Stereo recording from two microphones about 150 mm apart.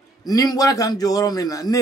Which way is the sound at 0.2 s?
25° left (ahead or behind).